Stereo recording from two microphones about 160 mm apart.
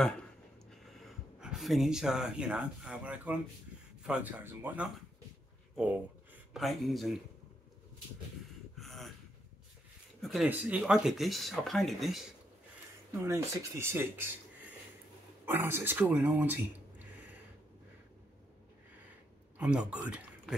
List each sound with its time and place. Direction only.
0.7 s speech: centre (ahead or behind)
6.5 s speech: centre (ahead or behind)
8.7 s gasp: centre (ahead or behind)
10.3 s speech: 5° right (ahead or behind)
13.2 s speech: 15° right (ahead or behind)
15.4 s speech: 15° right (ahead or behind)
19.6 s speech: 5° right (ahead or behind)